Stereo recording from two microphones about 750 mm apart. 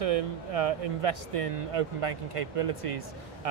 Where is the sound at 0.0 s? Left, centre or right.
Right.